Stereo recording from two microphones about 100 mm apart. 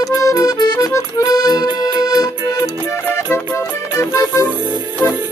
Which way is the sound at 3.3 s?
30° left (ahead or behind).